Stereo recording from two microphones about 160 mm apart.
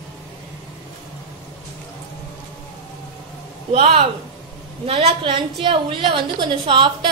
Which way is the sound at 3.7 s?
40° right (ahead or behind).